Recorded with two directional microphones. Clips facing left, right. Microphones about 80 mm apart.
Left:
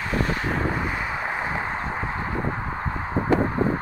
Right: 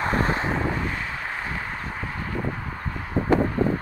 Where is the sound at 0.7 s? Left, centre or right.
Centre.